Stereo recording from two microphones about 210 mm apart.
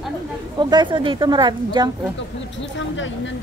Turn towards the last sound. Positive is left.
turn(degrees=60)  # may be behind; listen again after turning